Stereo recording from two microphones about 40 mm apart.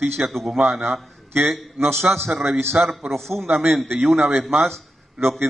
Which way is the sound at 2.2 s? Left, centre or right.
Centre.